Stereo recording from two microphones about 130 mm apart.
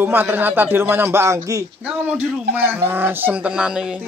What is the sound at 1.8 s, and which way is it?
A man's voice, 10° right (ahead or behind).